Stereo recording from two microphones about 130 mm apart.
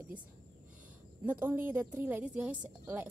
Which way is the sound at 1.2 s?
15° right (ahead or behind).